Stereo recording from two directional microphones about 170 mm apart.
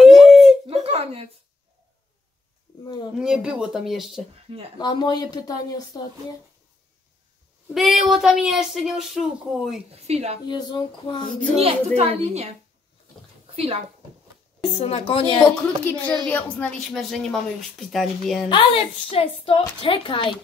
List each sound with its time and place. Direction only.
0.2 s laughter: centre (ahead or behind)
0.8 s a sound: 35° right (ahead or behind)
2.8 s a sound: 25° left (ahead or behind)
3.2 s a woman's voice: 5° right (ahead or behind)
4.7 s speech: 25° left (ahead or behind)
7.7 s a woman's voice: centre (ahead or behind)
9.8 s a woman's voice: 40° right (ahead or behind)
10.5 s speech: 25° left (ahead or behind)
11.5 s a woman's voice: 35° right (ahead or behind)
14.6 s a woman's voice: 35° left (ahead or behind)
15.6 s a woman's voice: 10° left (ahead or behind)
18.5 s a woman's voice: 30° left (ahead or behind)